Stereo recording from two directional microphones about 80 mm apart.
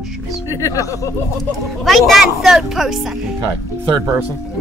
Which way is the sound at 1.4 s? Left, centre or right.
Centre.